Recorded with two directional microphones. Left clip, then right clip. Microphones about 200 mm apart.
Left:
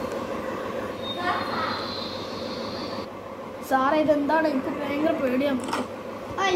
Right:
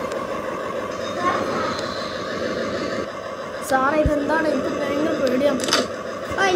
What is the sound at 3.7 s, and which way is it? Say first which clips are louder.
Speech: right 2 dB; centre (ahead or behind).